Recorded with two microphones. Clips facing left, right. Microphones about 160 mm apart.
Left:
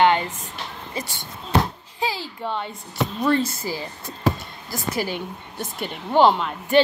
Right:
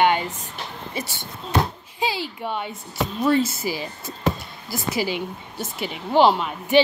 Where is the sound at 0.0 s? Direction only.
15° right (ahead or behind).